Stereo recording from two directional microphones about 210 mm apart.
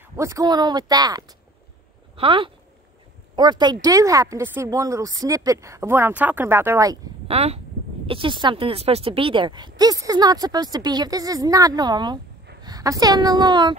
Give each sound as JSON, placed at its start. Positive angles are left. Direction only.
{"t": 0.0, "sound": "speech", "side_deg": -15}
{"t": 7.2, "sound": "speech", "side_deg": -30}